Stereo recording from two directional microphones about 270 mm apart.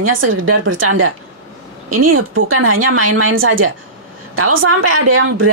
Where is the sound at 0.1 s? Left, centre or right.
Right.